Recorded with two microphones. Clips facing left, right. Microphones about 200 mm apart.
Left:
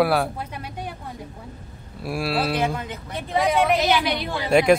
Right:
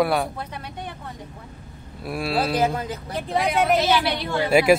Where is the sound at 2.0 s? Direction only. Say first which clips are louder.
Even; centre (ahead or behind).